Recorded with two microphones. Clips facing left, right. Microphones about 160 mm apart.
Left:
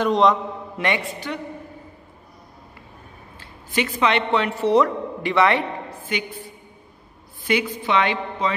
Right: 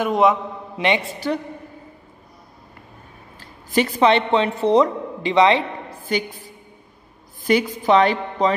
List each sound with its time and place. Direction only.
0.0 s a man's voice: 5° right (ahead or behind)
0.7 s a man's voice: 20° right (ahead or behind)
3.3 s a woman's voice: 40° right (ahead or behind); by 5.7 s 20° right (ahead or behind)
6.0 s a woman's voice: 35° right (ahead or behind)